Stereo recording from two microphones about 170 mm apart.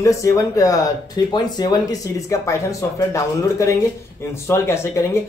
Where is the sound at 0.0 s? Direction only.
20° left (ahead or behind).